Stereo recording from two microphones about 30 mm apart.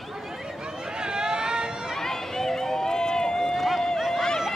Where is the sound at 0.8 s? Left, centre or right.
Right.